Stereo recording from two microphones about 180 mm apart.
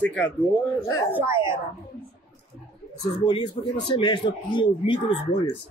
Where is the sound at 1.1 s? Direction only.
10° right (ahead or behind).